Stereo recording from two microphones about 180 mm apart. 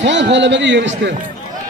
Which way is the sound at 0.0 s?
80° right.